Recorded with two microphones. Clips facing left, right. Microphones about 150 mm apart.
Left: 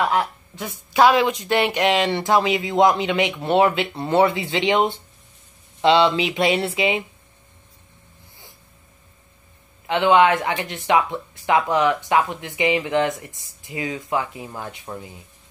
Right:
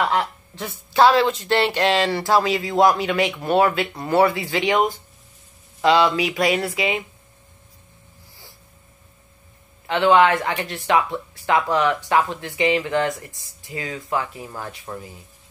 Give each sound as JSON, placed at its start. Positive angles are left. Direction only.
{"t": 0.0, "sound": "speech", "side_deg": 5}
{"t": 9.8, "sound": "speech", "side_deg": 20}